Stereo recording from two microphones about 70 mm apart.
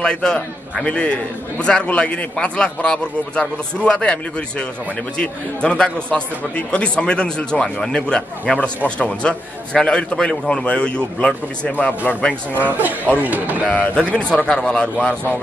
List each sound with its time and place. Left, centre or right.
0.0 s a man's voice: centre
12.5 s speech: right
13.9 s a man's voice: centre